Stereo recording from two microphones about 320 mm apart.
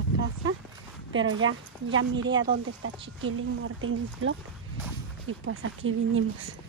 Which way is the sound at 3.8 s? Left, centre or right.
Right.